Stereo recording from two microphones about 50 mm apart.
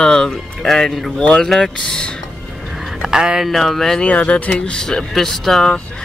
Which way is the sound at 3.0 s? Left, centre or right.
Centre.